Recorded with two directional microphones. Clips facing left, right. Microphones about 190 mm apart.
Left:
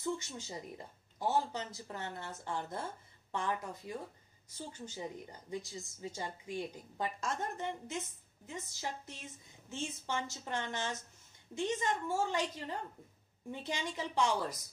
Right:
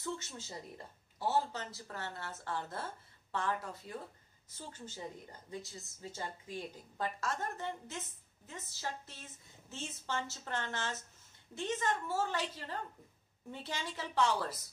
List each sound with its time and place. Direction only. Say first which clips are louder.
0.4 s speech: left 2 dB; 15° left (ahead or behind)